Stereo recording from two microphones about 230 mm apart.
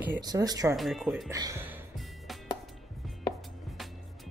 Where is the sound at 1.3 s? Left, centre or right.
Centre.